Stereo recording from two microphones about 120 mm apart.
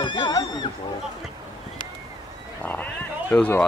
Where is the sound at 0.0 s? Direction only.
35° left (ahead or behind).